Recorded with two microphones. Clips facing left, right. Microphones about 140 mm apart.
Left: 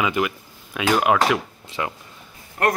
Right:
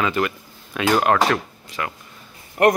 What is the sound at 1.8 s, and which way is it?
Speech, 20° left (ahead or behind).